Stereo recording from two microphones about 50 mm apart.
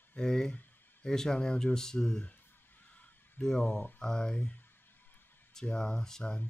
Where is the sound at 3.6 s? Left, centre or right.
Left.